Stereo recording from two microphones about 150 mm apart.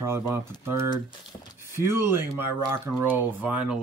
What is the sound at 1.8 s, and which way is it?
Speech, 15° right (ahead or behind).